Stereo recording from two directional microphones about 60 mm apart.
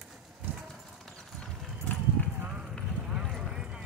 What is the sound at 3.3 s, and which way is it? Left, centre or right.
Vehicle, centre.